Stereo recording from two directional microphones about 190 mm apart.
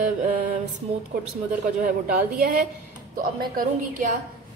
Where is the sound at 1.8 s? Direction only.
45° right (ahead or behind).